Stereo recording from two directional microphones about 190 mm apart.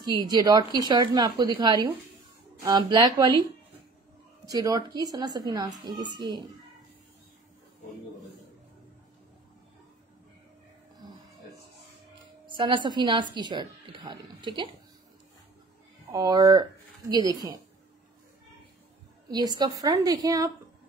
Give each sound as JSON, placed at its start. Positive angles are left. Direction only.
{"t": 0.0, "sound": "a woman's voice", "side_deg": -20}
{"t": 4.5, "sound": "a woman's voice", "side_deg": -20}
{"t": 12.4, "sound": "speech", "side_deg": -25}
{"t": 16.1, "sound": "a woman's voice", "side_deg": -20}
{"t": 19.3, "sound": "a woman's voice", "side_deg": -20}